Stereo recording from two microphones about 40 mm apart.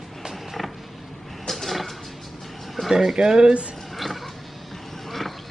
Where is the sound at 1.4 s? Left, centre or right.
Centre.